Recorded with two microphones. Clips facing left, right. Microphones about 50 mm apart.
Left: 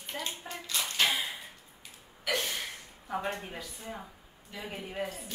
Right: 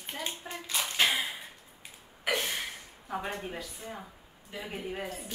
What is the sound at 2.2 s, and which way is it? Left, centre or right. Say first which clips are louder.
Gasp: right 1 dB; centre.